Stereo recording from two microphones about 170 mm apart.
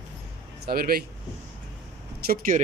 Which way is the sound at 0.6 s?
60° right (ahead or behind).